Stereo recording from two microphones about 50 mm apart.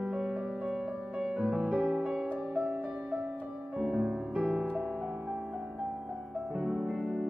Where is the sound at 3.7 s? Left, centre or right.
Right.